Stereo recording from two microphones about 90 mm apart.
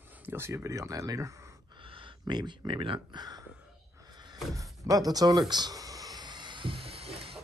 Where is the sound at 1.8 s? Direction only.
70° right (ahead or behind).